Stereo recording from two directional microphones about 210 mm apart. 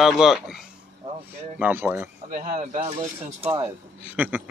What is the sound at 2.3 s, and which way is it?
Speech, 40° right (ahead or behind).